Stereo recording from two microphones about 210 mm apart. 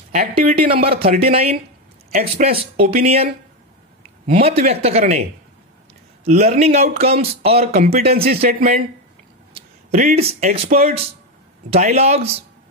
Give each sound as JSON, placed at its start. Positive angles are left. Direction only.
{"t": 0.1, "sound": "a man's voice", "side_deg": -30}
{"t": 4.3, "sound": "a man's voice", "side_deg": -30}
{"t": 6.2, "sound": "a man's voice", "side_deg": -30}
{"t": 8.3, "sound": "speech", "side_deg": -45}
{"t": 9.5, "sound": "speech", "side_deg": -30}